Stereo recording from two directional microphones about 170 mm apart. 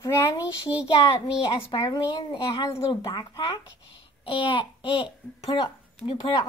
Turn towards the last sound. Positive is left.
turn(degrees=30)  # may be behind; listen again after turning